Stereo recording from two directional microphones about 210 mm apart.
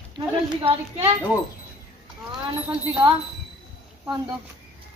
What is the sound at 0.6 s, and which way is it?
Speech, 25° right (ahead or behind).